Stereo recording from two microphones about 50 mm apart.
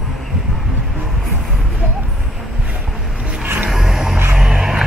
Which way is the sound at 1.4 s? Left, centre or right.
Centre.